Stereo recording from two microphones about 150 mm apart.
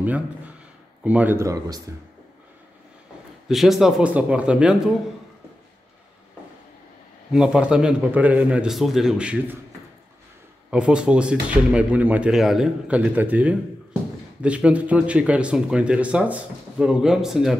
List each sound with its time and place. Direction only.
1.0 s speech: 10° right (ahead or behind)
3.4 s a man's voice: centre (ahead or behind)
7.3 s speech: 5° right (ahead or behind)
10.7 s speech: 5° right (ahead or behind)